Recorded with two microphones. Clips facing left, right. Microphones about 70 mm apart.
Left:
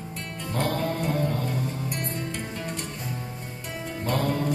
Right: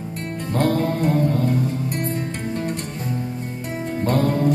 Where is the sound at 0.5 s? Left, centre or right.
Right.